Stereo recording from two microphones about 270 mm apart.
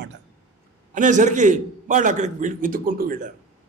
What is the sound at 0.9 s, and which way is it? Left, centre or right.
A man's voice, right.